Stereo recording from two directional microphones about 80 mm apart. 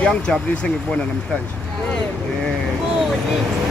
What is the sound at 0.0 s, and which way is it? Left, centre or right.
Speech, centre.